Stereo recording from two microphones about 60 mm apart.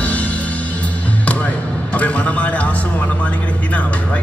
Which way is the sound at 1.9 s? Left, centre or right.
Left.